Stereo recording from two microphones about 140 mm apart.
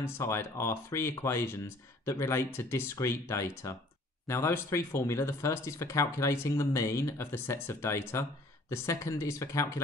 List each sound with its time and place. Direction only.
0.0 s speech: 20° left (ahead or behind)